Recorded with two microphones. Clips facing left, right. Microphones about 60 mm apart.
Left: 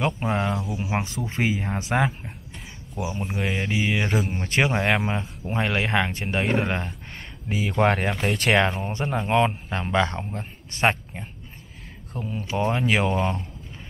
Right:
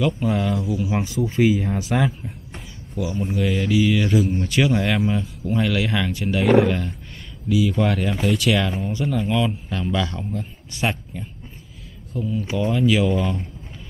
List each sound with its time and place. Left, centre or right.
0.0 s speech: left